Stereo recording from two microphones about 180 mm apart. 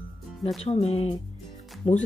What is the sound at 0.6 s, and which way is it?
Speech, 35° left (ahead or behind).